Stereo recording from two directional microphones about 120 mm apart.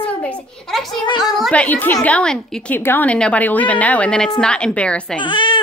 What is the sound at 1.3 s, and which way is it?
A woman's voice, 5° left (ahead or behind).